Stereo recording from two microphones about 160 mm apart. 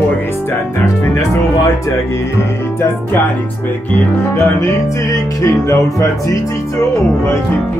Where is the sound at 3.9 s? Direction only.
15° left (ahead or behind).